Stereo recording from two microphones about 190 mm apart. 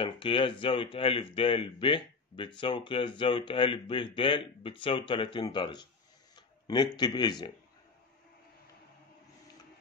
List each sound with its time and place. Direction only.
0.0 s speech: 25° left (ahead or behind)